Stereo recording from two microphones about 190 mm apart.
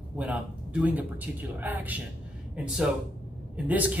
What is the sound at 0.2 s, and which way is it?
Speech, 5° right (ahead or behind).